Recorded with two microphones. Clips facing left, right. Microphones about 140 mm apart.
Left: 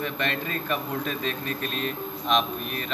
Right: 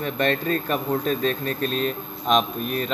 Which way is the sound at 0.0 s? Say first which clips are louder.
Right 6 dB; 45° right (ahead or behind).